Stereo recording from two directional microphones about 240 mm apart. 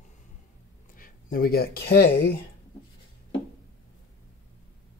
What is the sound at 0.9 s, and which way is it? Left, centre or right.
Speech, left.